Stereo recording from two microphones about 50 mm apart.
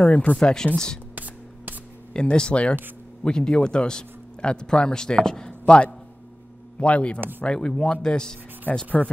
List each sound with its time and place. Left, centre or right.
0.0 s speech: left
0.4 s speech: centre
1.1 s a sound: right
2.1 s speech: centre
7.2 s speech: right
7.4 s speech: centre
8.7 s speech: left